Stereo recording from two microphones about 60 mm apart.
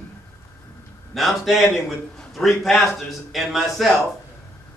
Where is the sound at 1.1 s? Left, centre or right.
Centre.